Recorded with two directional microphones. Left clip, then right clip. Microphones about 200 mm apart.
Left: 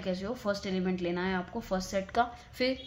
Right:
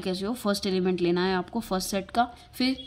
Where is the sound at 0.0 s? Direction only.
35° right (ahead or behind).